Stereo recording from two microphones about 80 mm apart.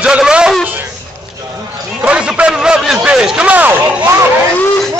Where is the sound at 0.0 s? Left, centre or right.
Centre.